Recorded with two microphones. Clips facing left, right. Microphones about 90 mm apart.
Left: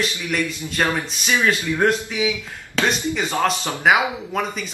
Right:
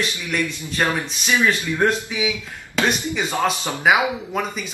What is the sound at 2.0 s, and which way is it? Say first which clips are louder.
Speech: left 2 dB; 15° right (ahead or behind).